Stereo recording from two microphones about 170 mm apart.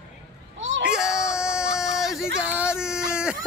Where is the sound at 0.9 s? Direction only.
5° right (ahead or behind).